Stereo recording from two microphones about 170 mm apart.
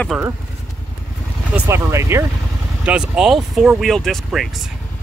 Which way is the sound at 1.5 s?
15° right (ahead or behind).